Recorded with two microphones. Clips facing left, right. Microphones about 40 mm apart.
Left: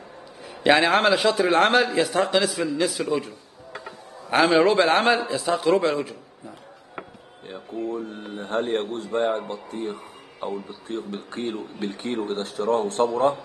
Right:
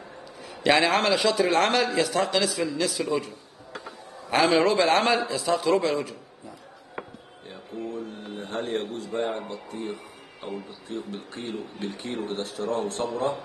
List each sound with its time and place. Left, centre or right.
0.5 s a man's voice: centre
3.0 s a sound: centre
4.3 s a man's voice: centre
7.4 s speech: left